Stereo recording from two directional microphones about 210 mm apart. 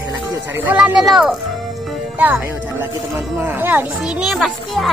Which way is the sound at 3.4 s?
10° right (ahead or behind).